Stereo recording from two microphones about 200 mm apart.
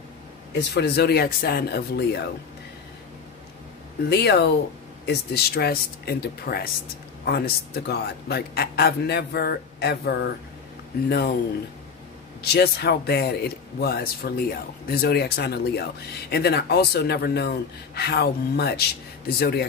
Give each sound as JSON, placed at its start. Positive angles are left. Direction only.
{"t": 0.6, "sound": "speech", "side_deg": 55}
{"t": 4.1, "sound": "speech", "side_deg": 55}
{"t": 12.4, "sound": "speech", "side_deg": 55}